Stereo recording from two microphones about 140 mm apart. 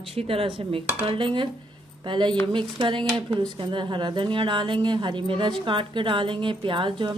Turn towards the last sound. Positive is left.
turn(degrees=-35)  # may be behind; listen again after turning